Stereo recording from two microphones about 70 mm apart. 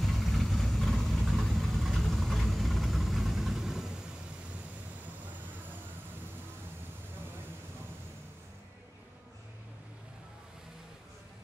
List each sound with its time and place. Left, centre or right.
0.0 s vehicle: centre